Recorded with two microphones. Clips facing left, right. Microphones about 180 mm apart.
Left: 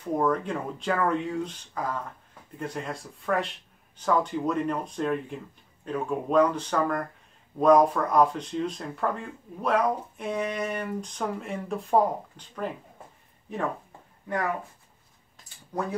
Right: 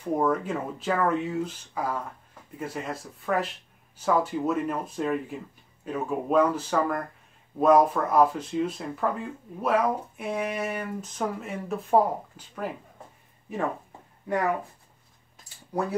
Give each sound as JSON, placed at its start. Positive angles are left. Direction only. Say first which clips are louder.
{"t": 0.0, "sound": "speech", "louder": "even", "side_deg": -5}
{"t": 15.7, "sound": "speech", "louder": "right 2 dB", "side_deg": -10}